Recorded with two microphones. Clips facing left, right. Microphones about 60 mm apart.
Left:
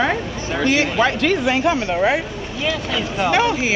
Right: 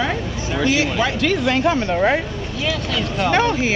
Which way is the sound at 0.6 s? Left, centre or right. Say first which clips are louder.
Left 2 dB; centre.